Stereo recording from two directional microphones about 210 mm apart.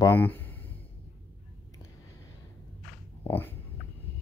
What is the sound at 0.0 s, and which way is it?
Speech, 10° left (ahead or behind).